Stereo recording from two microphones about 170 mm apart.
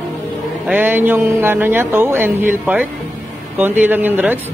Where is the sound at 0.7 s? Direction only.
10° right (ahead or behind).